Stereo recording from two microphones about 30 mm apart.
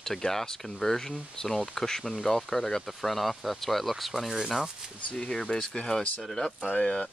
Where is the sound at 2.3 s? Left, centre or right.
Centre.